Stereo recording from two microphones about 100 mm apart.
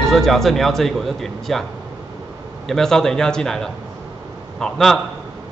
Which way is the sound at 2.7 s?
5° left (ahead or behind).